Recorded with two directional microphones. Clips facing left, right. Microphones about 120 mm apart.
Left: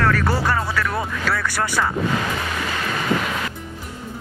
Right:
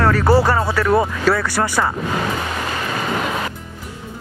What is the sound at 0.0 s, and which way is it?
Speech, 30° right (ahead or behind).